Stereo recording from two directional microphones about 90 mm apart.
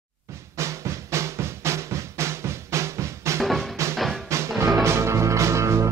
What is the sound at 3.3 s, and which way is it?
Music, centre (ahead or behind).